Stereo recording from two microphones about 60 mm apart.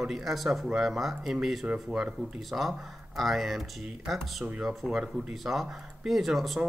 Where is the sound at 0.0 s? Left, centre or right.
Centre.